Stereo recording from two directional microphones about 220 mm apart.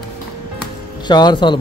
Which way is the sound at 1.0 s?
20° left (ahead or behind).